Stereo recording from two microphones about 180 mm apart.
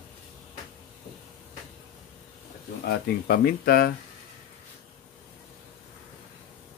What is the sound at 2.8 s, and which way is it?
A man's voice, 55° left (ahead or behind).